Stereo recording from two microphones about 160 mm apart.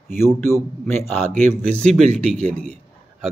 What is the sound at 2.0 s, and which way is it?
Speech, 40° right (ahead or behind).